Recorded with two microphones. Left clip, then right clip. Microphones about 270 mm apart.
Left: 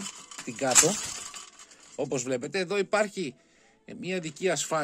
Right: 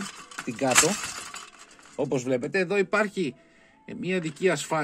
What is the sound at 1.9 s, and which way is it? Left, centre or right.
Speech, centre.